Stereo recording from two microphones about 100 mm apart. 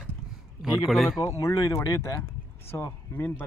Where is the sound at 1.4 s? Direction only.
30° left (ahead or behind).